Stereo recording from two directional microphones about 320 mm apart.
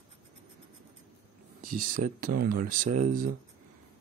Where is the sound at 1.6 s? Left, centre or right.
Right.